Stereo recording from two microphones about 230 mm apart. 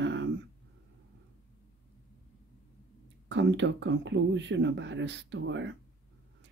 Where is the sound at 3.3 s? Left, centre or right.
Right.